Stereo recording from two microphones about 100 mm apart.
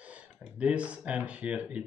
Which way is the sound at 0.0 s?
10° right (ahead or behind).